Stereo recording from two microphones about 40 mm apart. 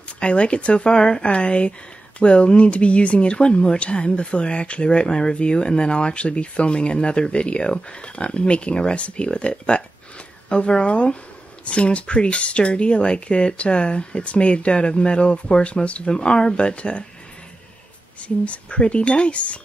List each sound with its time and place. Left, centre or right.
0.2 s speech: left
16.1 s speech: left
18.2 s speech: left